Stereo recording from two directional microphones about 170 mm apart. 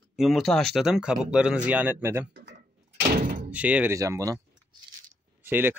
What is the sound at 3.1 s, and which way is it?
Door, 55° right (ahead or behind).